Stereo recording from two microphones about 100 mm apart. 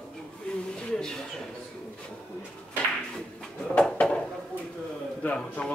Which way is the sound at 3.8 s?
10° left (ahead or behind).